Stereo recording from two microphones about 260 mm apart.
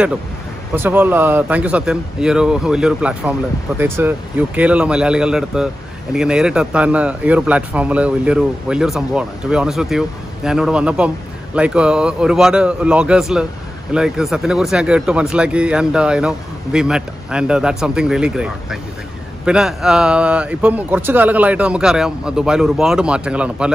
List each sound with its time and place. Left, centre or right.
0.7 s a man's voice: centre